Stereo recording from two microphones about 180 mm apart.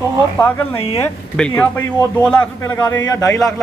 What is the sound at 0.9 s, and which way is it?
Speech, 10° left (ahead or behind).